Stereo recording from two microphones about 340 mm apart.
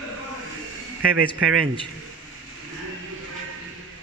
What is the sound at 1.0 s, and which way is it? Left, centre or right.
Speech, right.